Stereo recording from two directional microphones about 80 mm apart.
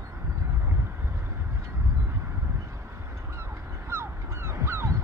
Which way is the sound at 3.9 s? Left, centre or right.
Right.